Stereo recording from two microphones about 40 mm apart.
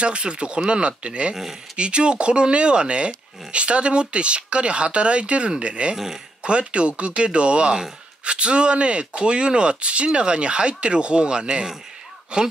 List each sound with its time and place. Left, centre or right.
0.0 s speech: right
1.3 s speech: centre
1.8 s speech: right